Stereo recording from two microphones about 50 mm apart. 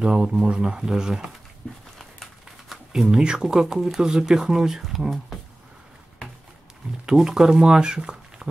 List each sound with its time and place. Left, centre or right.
0.0 s speech: centre
1.6 s a sound: centre
2.9 s speech: centre
7.1 s speech: centre